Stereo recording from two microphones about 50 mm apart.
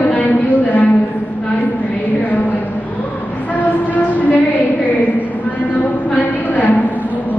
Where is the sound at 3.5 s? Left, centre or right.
Left.